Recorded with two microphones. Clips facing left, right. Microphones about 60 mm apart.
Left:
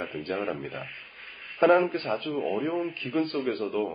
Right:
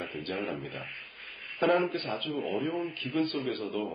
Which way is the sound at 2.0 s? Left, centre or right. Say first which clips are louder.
Left 4 dB; left.